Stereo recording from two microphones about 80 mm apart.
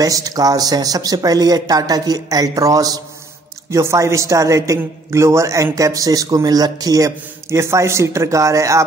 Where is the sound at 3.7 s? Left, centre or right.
Right.